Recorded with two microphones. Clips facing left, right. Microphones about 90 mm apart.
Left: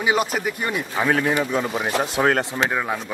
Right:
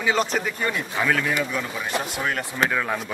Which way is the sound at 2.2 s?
60° left (ahead or behind).